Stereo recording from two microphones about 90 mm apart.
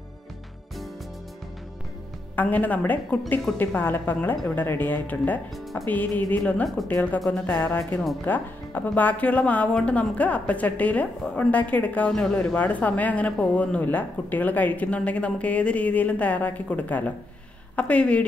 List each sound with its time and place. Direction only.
2.3 s speech: 15° left (ahead or behind)
7.2 s speech: 5° left (ahead or behind)
7.4 s speech: 20° left (ahead or behind)